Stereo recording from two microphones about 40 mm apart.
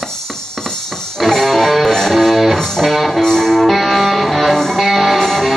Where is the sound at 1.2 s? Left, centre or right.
Centre.